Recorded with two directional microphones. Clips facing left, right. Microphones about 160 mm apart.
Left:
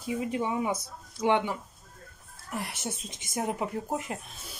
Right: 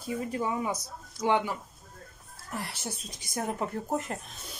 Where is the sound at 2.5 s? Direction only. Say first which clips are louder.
Left 2 dB; 20° left (ahead or behind).